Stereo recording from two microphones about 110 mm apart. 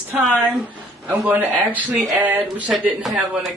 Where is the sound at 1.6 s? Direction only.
15° right (ahead or behind).